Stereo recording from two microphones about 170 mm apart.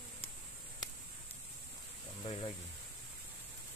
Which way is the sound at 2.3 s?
30° left (ahead or behind).